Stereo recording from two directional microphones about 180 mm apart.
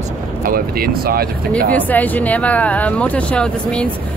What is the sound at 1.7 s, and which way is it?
Speech, 10° left (ahead or behind).